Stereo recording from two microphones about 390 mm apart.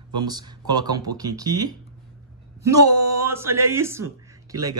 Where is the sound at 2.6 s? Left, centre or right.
Right.